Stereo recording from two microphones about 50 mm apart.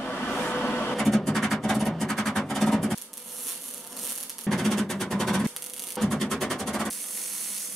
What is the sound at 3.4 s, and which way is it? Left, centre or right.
Music, centre.